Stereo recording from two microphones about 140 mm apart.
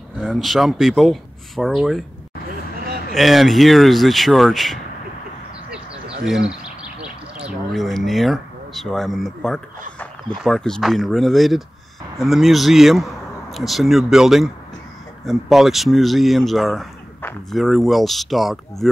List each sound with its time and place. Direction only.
0.2 s speech: centre (ahead or behind)
2.8 s a sound: 90° right
3.2 s speech: centre (ahead or behind)